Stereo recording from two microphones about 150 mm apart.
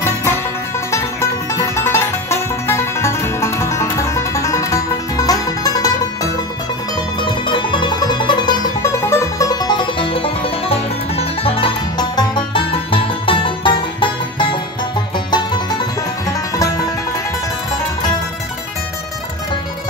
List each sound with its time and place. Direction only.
0.9 s music: 20° left (ahead or behind)
7.2 s music: 30° left (ahead or behind)